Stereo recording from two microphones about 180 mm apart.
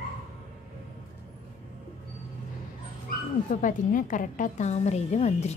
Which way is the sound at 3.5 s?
45° left (ahead or behind).